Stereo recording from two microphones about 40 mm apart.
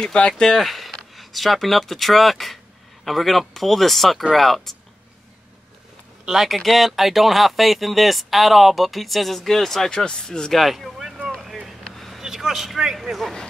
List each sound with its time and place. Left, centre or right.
0.0 s speech: left
0.6 s speech: centre
6.2 s speech: centre
9.8 s speech: centre
10.5 s speech: centre
11.9 s vehicle: centre
12.2 s a man's voice: centre